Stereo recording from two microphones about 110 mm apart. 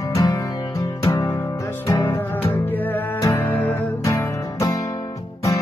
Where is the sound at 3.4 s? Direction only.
15° left (ahead or behind).